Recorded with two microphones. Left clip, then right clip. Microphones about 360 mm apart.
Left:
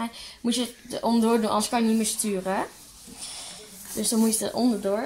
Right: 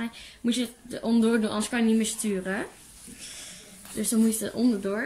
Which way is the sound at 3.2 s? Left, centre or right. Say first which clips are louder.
Left 4 dB; centre.